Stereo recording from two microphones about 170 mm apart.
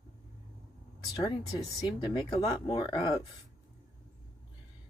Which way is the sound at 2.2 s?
20° left (ahead or behind).